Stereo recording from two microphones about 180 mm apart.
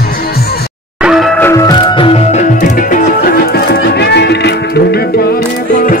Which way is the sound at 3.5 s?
65° left (ahead or behind).